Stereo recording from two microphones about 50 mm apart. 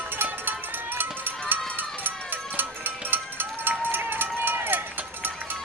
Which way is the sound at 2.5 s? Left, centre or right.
Right.